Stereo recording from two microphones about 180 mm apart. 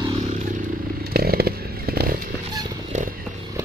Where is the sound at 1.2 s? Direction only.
60° right (ahead or behind).